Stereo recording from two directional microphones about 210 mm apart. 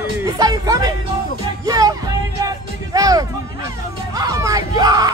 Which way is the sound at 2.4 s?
15° right (ahead or behind).